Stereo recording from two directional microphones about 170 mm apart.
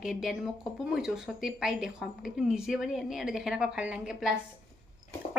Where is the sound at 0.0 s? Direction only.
Centre (ahead or behind).